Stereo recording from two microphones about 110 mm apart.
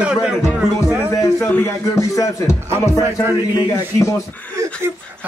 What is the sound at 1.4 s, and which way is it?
Speech, 20° left (ahead or behind).